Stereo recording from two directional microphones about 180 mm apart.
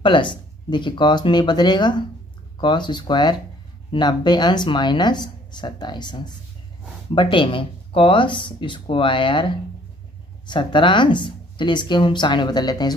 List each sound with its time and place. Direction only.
0.0 s speech: 25° left (ahead or behind)